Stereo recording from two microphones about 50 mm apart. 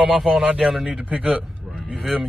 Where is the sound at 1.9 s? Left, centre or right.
Centre.